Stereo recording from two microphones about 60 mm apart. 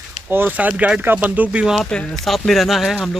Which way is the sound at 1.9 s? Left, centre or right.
Centre.